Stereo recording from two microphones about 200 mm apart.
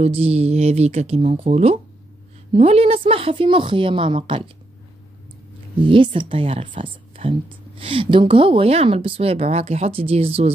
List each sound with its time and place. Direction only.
0.0 s speech: 30° right (ahead or behind)
5.8 s speech: 25° right (ahead or behind)